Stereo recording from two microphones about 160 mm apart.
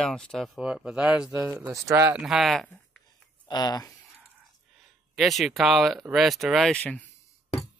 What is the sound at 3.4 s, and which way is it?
Speech, 25° left (ahead or behind).